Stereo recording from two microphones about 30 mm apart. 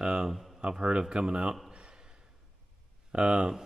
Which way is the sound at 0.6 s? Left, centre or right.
Right.